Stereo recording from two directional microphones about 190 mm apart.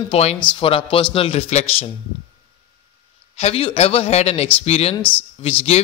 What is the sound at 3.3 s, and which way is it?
Speech, 30° left (ahead or behind).